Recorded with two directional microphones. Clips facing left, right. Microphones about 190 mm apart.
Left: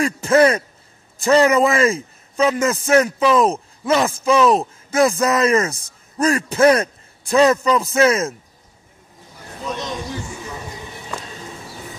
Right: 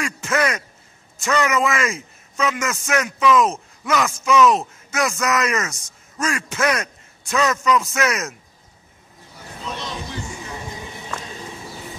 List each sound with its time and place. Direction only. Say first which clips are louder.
0.0 s a man's voice: left 8 dB; 30° left (ahead or behind)